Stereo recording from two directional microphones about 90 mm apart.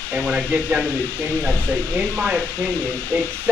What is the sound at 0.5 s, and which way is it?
Speech, 15° right (ahead or behind).